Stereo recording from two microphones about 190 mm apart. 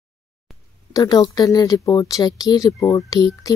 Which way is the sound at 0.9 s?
20° left (ahead or behind).